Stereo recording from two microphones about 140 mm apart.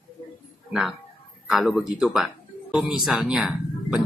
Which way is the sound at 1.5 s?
Centre (ahead or behind).